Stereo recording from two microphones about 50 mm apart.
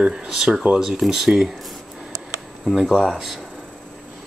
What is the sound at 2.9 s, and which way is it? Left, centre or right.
Speech, centre.